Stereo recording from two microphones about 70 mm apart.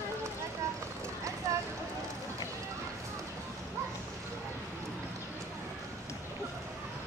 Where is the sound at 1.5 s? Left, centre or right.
Right.